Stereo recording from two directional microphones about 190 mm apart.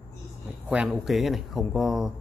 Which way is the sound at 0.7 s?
5° right (ahead or behind).